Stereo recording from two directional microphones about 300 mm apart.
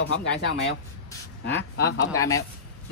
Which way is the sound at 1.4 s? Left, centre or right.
Left.